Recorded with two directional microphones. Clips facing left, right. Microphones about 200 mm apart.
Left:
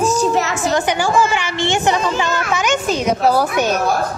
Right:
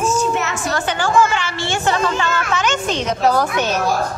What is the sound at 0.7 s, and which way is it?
Speech, 15° left (ahead or behind).